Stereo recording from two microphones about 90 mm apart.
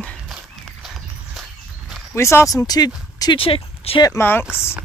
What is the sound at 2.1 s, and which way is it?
Speech, 30° left (ahead or behind).